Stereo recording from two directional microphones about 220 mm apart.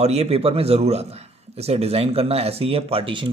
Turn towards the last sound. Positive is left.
turn(degrees=-25)  # may be behind; listen again after turning